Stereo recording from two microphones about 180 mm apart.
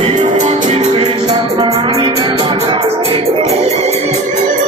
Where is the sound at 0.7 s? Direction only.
30° right (ahead or behind).